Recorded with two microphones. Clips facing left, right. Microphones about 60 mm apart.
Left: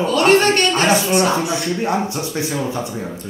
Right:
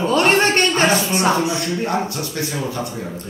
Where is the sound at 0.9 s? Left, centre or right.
Centre.